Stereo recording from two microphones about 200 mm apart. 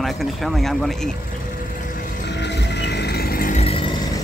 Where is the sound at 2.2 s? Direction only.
60° left (ahead or behind); by 3.9 s 30° left (ahead or behind).